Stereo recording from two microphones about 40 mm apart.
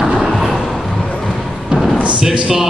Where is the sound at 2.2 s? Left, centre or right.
Centre.